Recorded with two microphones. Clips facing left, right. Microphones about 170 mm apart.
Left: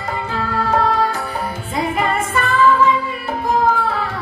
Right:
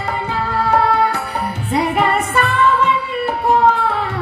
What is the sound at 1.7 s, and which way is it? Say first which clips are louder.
Music: right 3 dB; 65° right (ahead or behind).